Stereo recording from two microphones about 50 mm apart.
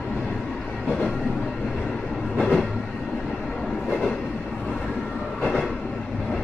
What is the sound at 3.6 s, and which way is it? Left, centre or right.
Train, centre.